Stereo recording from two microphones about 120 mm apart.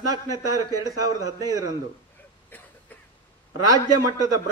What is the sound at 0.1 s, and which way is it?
Speech, 30° right (ahead or behind).